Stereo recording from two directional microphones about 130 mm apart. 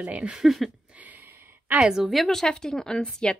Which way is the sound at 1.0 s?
15° right (ahead or behind).